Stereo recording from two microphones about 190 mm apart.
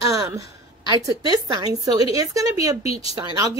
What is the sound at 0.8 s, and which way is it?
A woman's voice, 20° right (ahead or behind).